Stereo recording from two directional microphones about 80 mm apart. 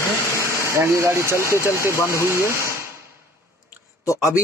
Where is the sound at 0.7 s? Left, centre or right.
Right.